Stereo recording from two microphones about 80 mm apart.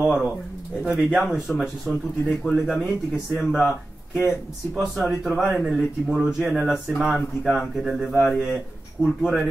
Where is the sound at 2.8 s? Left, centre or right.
Centre.